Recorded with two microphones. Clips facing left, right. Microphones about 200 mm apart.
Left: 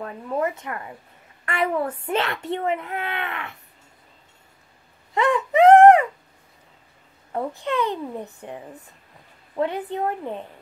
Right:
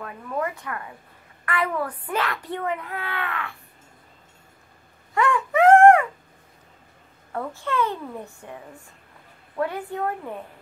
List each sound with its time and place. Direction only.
0.0 s a child's voice: 25° left (ahead or behind)
5.1 s wail: 20° left (ahead or behind)
7.3 s a child's voice: 15° left (ahead or behind)
9.6 s a child's voice: 20° left (ahead or behind)